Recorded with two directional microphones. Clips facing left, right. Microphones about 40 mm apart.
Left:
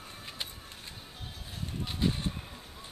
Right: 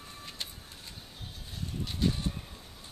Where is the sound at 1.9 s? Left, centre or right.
Centre.